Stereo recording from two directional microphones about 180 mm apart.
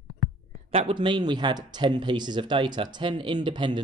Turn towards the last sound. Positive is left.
turn(degrees=-25)  # may be behind; listen again after turning